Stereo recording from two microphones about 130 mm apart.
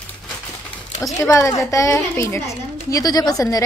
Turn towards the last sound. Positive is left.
turn(degrees=25)  # may be behind; listen again after turning